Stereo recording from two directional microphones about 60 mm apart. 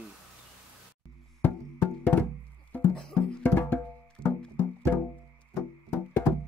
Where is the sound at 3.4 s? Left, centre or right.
Left.